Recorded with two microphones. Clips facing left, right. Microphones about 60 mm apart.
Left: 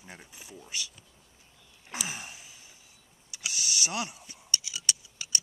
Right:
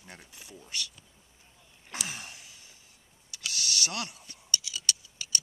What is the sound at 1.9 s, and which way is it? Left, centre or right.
Gasp, centre.